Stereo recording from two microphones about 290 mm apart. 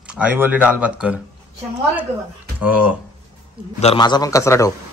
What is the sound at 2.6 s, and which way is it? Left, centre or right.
Speech, centre.